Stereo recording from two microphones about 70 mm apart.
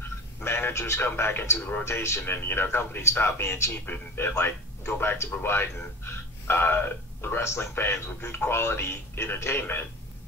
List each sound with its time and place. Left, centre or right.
0.4 s speech: left